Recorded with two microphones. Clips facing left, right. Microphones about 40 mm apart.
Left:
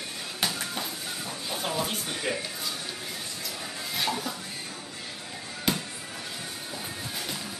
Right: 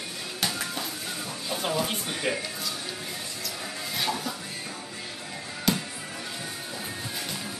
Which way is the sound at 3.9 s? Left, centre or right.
Centre.